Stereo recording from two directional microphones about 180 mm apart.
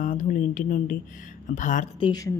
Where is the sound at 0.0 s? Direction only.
45° left (ahead or behind).